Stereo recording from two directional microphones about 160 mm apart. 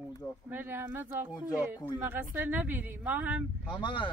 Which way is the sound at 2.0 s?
15° right (ahead or behind).